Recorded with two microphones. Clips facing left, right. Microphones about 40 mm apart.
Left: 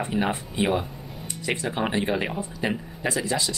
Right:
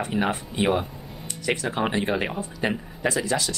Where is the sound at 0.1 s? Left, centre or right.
Centre.